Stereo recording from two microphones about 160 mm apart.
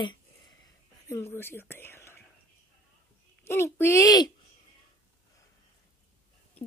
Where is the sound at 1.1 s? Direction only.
15° left (ahead or behind).